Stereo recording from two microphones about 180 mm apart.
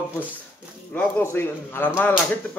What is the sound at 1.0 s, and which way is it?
Speech, 10° left (ahead or behind).